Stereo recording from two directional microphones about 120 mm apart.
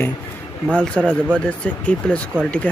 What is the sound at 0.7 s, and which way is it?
Speech, 10° left (ahead or behind).